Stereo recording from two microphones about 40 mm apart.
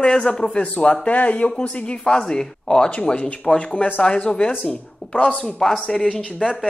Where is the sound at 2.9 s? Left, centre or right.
Left.